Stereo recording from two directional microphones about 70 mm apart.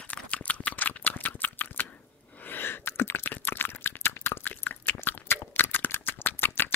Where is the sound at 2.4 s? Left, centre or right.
Left.